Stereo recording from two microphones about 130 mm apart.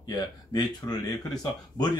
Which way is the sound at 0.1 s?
30° left (ahead or behind).